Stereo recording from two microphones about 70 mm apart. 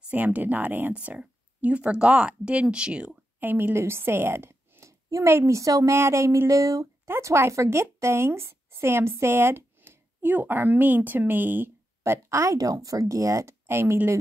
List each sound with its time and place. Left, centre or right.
0.1 s speech: right
3.3 s a woman's voice: right
7.1 s a woman's voice: right
12.0 s speech: right
13.7 s a woman's voice: right